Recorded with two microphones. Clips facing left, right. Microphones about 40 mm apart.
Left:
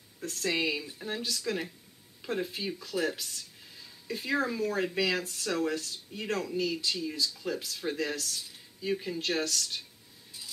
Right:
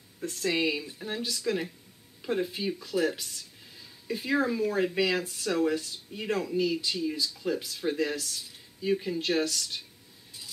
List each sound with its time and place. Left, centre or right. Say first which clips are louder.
0.2 s speech: right 2 dB; centre